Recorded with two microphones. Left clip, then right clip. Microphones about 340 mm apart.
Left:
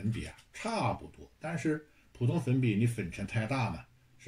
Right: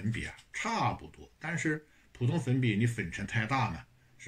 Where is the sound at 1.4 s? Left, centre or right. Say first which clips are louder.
Right 1 dB; left.